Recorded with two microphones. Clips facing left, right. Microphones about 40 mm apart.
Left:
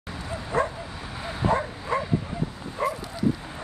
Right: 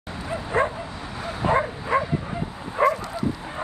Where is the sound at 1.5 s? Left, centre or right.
Right.